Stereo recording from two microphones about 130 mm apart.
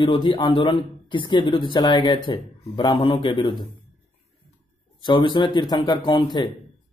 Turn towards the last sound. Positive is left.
turn(degrees=40)  # may be behind; listen again after turning